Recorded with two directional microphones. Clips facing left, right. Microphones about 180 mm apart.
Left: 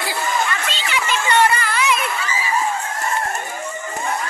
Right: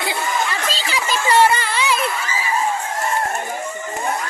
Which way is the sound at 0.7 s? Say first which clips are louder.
Even; 35° right (ahead or behind).